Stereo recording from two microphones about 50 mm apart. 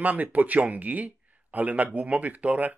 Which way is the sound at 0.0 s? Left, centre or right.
Right.